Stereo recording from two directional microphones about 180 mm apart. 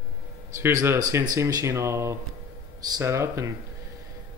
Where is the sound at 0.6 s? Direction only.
15° right (ahead or behind).